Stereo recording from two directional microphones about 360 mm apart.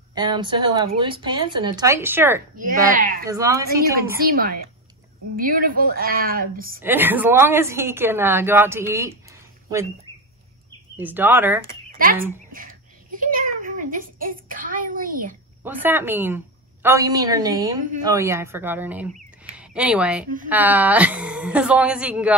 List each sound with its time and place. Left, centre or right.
0.1 s a woman's voice: centre
2.5 s a woman's voice: right
3.3 s a woman's voice: centre
4.3 s a woman's voice: right
6.8 s a woman's voice: centre
11.0 s a woman's voice: centre
12.5 s a sound: right
15.6 s a woman's voice: centre